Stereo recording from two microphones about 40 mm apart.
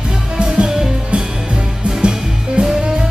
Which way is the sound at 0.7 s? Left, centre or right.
Centre.